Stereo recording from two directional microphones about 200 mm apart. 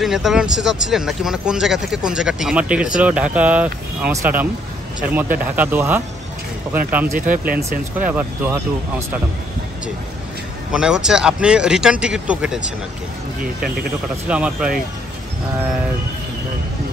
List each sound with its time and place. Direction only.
0.0 s speech: centre (ahead or behind)
7.2 s speech: 45° right (ahead or behind)
8.0 s speech: 10° right (ahead or behind)
10.7 s speech: 5° right (ahead or behind)
14.2 s speech: 5° right (ahead or behind)